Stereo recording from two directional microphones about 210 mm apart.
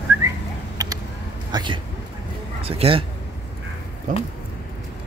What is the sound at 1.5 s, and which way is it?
Speech, 20° right (ahead or behind).